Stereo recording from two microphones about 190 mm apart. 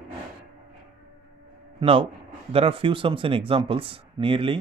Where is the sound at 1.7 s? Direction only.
30° right (ahead or behind).